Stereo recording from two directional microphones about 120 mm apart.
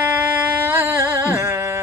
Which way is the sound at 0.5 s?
15° right (ahead or behind).